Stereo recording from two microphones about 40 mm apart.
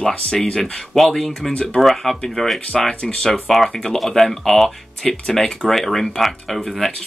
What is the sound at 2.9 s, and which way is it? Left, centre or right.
Speech, left.